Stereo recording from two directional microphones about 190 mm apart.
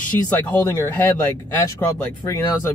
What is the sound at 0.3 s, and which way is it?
Speech, 15° left (ahead or behind).